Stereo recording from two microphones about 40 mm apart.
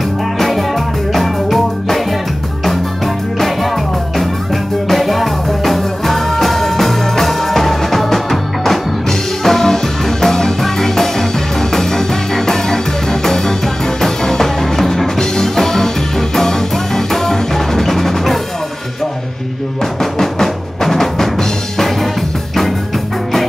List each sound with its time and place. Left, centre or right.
0.4 s music: centre
3.3 s music: centre
4.8 s music: centre
20.0 s drum: centre